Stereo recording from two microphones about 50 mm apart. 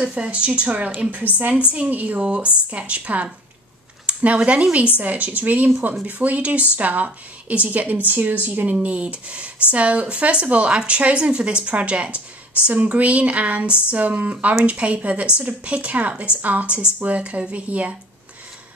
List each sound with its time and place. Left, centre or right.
0.0 s a woman's voice: right
2.1 s a woman's voice: right